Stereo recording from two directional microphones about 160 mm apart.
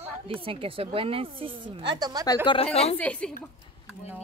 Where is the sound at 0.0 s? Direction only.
35° right (ahead or behind).